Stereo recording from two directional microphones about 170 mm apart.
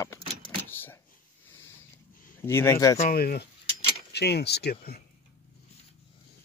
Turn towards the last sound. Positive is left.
turn(degrees=65)  # may be behind; listen again after turning